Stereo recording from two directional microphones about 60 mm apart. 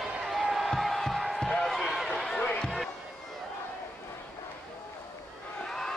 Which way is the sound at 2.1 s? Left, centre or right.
Centre.